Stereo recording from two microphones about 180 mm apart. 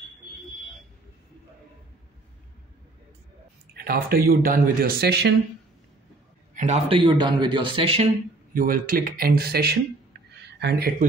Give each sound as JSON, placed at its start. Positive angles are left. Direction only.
{"t": 3.7, "sound": "a man's voice", "side_deg": -55}
{"t": 6.5, "sound": "a man's voice", "side_deg": -40}
{"t": 8.5, "sound": "speech", "side_deg": -50}